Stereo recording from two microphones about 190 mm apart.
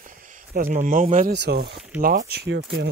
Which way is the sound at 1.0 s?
45° right (ahead or behind).